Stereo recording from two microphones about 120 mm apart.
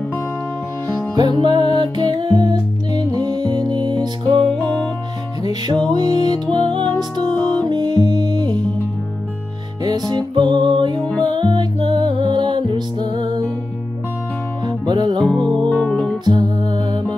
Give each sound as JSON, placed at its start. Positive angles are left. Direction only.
{"t": 1.1, "sound": "music", "side_deg": -40}
{"t": 5.4, "sound": "music", "side_deg": -35}
{"t": 9.8, "sound": "music", "side_deg": -35}
{"t": 14.9, "sound": "music", "side_deg": -40}
{"t": 15.2, "sound": "music", "side_deg": 10}
{"t": 16.3, "sound": "music", "side_deg": -35}